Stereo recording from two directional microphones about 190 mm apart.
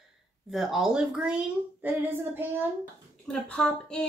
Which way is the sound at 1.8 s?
10° right (ahead or behind).